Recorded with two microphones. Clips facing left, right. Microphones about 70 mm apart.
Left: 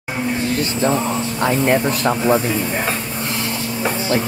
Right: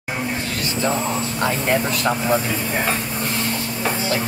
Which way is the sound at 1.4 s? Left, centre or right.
Left.